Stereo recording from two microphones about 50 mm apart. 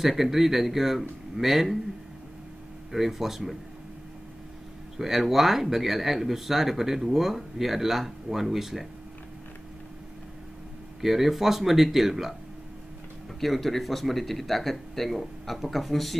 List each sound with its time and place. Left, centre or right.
0.0 s speech: centre
2.9 s speech: centre
4.9 s speech: centre
11.0 s speech: centre
13.4 s speech: centre